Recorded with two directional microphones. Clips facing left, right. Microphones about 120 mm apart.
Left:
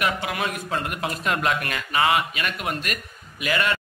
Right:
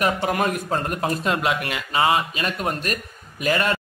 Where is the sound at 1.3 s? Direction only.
20° right (ahead or behind).